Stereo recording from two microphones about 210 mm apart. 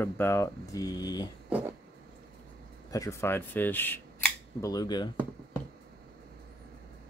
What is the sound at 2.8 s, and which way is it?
Speech, 15° left (ahead or behind).